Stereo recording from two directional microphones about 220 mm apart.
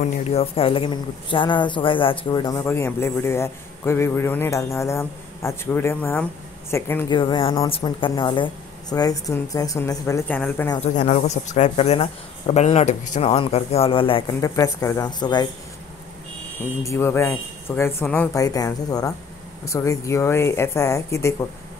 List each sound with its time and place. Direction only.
0.0 s speech: 25° left (ahead or behind); by 7.1 s 10° left (ahead or behind)
7.1 s speech: 20° left (ahead or behind)
10.8 s speech: 35° left (ahead or behind)
16.8 s speech: 10° left (ahead or behind)